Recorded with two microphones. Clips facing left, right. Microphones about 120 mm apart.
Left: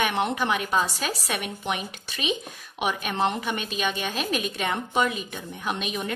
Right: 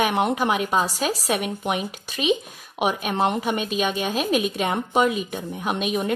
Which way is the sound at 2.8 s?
40° right (ahead or behind).